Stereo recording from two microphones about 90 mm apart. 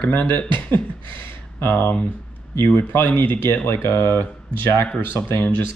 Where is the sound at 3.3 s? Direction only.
20° left (ahead or behind).